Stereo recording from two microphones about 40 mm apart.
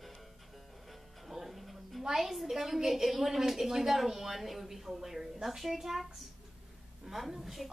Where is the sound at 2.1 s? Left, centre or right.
Centre.